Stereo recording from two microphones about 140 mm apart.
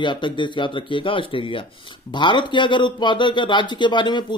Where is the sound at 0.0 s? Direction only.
35° left (ahead or behind).